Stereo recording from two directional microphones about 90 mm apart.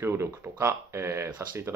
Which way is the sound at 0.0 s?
30° right (ahead or behind).